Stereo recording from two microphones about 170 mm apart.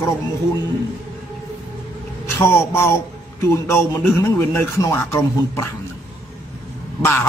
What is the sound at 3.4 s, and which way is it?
Speech, 15° left (ahead or behind).